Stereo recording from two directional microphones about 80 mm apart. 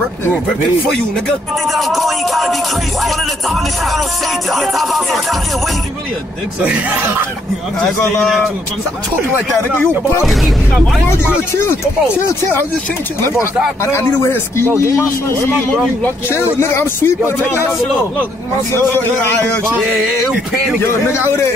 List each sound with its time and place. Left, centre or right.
1.7 s music: centre
6.6 s speech: centre
10.2 s music: centre
13.8 s speech: left
17.5 s speech: centre
20.8 s speech: left